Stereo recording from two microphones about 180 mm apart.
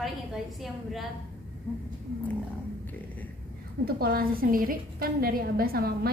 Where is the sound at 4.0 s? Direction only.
55° right (ahead or behind).